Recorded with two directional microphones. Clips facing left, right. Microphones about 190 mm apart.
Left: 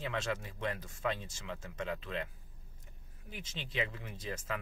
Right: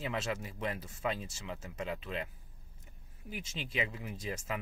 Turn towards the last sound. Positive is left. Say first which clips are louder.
# right 2 dB
turn(degrees=-10)  # may be behind; listen again after turning